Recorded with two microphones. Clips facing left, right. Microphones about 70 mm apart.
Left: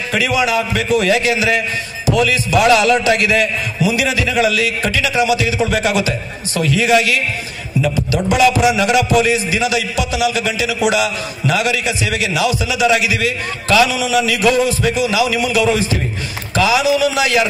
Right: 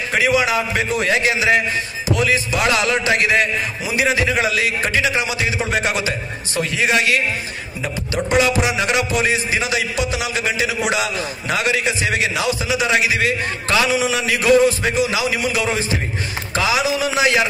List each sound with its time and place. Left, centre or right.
0.1 s a man's voice: right